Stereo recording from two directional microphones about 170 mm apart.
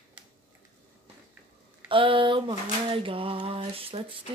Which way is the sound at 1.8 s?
30° right (ahead or behind).